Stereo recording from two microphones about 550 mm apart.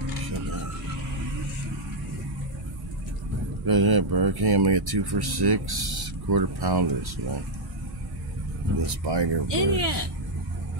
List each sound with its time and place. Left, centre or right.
3.6 s speech: right
8.8 s speech: right